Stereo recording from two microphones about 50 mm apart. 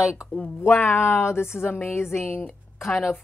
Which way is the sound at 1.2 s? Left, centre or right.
Left.